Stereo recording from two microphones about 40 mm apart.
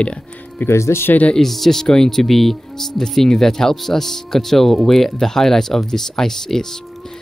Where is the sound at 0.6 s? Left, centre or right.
Left.